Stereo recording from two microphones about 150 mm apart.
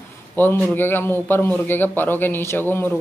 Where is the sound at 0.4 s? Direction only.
15° left (ahead or behind).